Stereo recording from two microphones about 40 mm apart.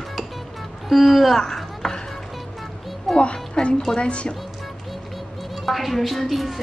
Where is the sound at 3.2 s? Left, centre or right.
Left.